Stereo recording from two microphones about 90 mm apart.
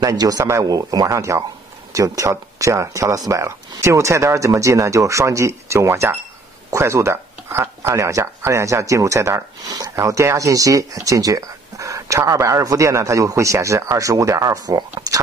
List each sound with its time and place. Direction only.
0.0 s speech: 45° right (ahead or behind)